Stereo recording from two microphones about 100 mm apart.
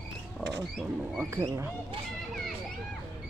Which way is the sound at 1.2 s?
30° right (ahead or behind).